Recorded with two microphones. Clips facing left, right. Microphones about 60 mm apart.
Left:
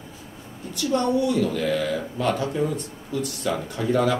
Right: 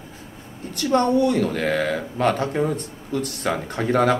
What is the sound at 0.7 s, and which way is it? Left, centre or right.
Speech, right.